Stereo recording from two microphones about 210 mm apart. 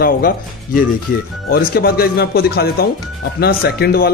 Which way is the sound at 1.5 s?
45° left (ahead or behind).